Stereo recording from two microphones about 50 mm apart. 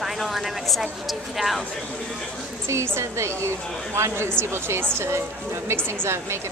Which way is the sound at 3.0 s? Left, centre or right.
Right.